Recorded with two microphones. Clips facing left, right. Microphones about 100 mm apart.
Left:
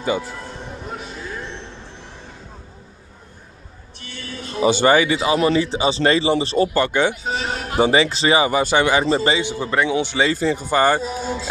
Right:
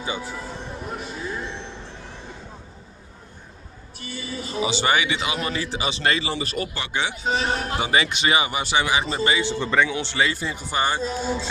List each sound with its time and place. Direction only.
0.2 s music: 5° right (ahead or behind)
4.0 s a man's voice: 5° right (ahead or behind)
4.6 s speech: 45° left (ahead or behind); by 6.7 s 30° left (ahead or behind)
6.7 s speech: 50° left (ahead or behind)
7.2 s a sound: centre (ahead or behind)
7.8 s speech: 30° left (ahead or behind); by 9.0 s 50° left (ahead or behind)
9.1 s speech: 30° left (ahead or behind)
9.4 s a man's voice: 15° left (ahead or behind)
10.3 s speech: 40° left (ahead or behind)
11.0 s a man's voice: 10° left (ahead or behind)